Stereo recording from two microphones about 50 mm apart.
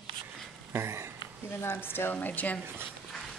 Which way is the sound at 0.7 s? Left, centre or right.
Right.